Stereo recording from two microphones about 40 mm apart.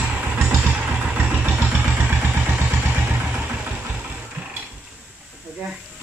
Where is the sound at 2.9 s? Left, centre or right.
Right.